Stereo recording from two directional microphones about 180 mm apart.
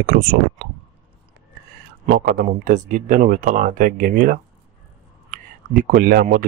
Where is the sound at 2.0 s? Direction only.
55° right (ahead or behind).